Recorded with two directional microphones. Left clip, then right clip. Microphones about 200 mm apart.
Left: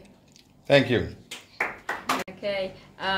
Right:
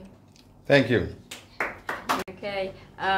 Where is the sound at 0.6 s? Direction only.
10° right (ahead or behind).